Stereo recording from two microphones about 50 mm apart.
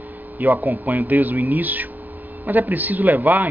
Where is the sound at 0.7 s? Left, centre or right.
Right.